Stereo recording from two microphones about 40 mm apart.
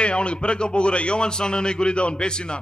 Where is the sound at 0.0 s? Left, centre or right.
Left.